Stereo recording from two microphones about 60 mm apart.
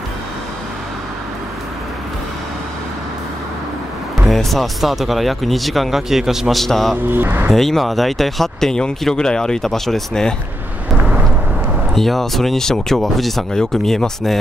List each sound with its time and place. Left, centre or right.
4.3 s speech: centre
7.1 s speech: right
7.5 s speech: centre
10.9 s vehicle: right
11.9 s speech: centre